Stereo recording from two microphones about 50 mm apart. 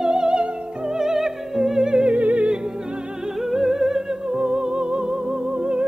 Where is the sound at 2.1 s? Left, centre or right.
Right.